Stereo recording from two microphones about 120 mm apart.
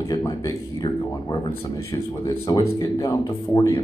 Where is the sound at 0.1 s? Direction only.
30° left (ahead or behind).